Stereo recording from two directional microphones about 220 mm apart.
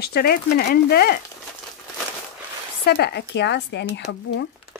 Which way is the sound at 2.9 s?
45° left (ahead or behind).